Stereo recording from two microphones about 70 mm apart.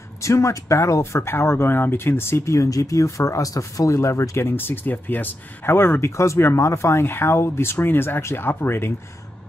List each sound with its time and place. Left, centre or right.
0.2 s speech: left